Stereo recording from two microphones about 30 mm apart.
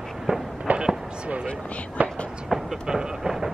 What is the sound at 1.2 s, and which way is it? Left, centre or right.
Speech, right.